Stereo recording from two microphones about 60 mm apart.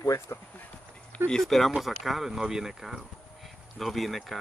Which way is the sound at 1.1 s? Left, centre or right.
Centre.